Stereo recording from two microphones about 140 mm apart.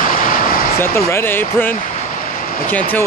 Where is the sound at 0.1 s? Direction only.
90° left.